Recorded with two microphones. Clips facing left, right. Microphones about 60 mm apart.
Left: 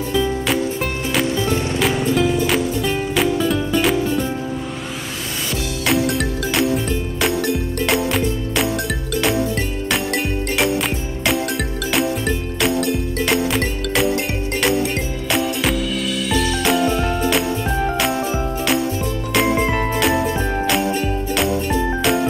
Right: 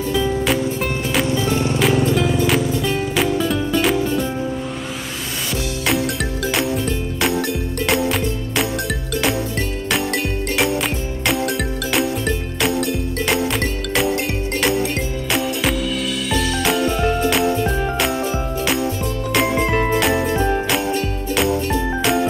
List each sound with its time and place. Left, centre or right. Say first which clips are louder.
0.1 s music: even; centre
5.9 s music: left 3 dB; centre
20.0 s jingle bell: even; centre
21.4 s music: right 2 dB; centre
21.6 s jingle bell: left 1 dB; centre